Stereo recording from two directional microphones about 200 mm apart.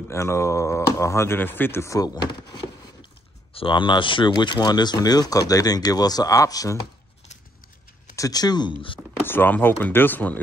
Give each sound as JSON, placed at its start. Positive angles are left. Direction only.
{"t": 0.1, "sound": "speech", "side_deg": 15}
{"t": 8.2, "sound": "speech", "side_deg": 20}
{"t": 9.2, "sound": "speech", "side_deg": 10}